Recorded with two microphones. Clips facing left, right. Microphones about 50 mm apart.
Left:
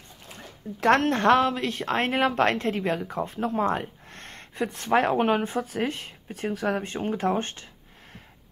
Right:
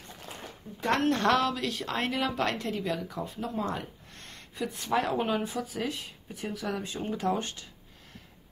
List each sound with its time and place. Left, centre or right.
0.7 s speech: left
1.0 s a woman's voice: left